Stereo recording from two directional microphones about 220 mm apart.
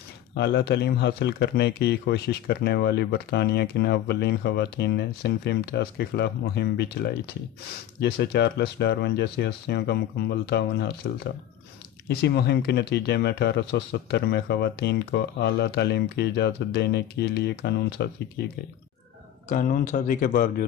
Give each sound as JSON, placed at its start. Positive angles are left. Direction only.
{"t": 0.3, "sound": "speech", "side_deg": 50}
{"t": 8.0, "sound": "speech", "side_deg": 50}
{"t": 12.1, "sound": "speech", "side_deg": 45}
{"t": 19.5, "sound": "speech", "side_deg": 35}